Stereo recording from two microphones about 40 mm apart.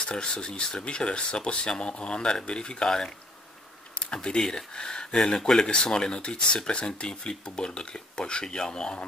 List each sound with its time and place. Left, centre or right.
0.0 s speech: centre
4.1 s speech: left